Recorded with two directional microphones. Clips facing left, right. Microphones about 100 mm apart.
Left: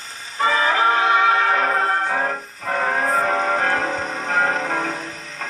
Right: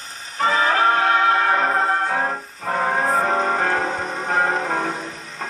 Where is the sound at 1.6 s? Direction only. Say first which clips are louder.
Even; centre (ahead or behind).